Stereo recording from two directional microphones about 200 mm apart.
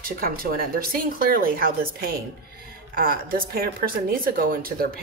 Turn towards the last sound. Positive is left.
turn(degrees=-45)  # may be behind; listen again after turning